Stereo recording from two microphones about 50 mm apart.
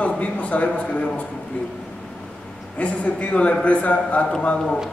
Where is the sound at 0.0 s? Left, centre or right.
Left.